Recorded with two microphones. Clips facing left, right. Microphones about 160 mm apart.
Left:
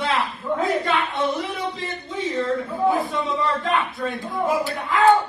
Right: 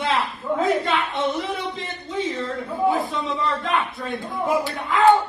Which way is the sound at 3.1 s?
Centre (ahead or behind).